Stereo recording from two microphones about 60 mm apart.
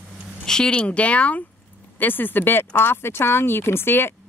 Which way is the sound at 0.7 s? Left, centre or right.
Left.